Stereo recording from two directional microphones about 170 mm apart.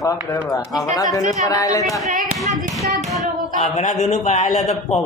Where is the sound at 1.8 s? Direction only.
Centre (ahead or behind).